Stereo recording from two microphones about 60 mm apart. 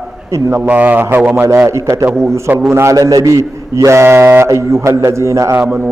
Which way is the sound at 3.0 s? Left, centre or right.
Right.